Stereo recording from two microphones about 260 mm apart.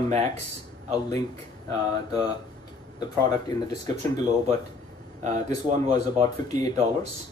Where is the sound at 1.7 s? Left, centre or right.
Centre.